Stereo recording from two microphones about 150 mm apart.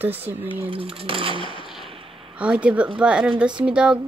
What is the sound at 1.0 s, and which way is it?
Speech, 35° right (ahead or behind).